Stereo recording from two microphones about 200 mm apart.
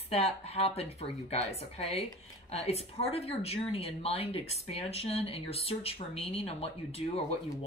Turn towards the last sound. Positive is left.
turn(degrees=30)  # may be behind; listen again after turning